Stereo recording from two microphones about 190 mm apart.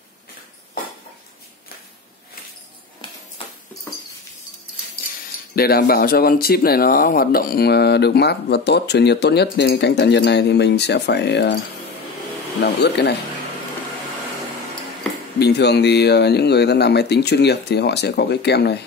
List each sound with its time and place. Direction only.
3.0 s a sound: 25° left (ahead or behind)
5.6 s speech: 55° left (ahead or behind)
12.6 s speech: 60° left (ahead or behind)
15.3 s speech: 60° left (ahead or behind)